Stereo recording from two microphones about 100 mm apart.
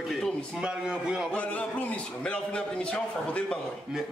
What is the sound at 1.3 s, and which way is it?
A man's voice, 15° left (ahead or behind).